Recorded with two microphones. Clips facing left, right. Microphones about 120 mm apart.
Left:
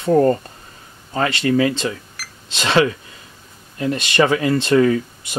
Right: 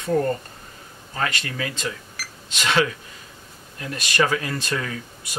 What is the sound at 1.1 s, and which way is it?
Speech, 30° left (ahead or behind).